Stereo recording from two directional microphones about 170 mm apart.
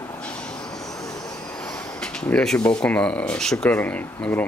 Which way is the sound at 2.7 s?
5° left (ahead or behind).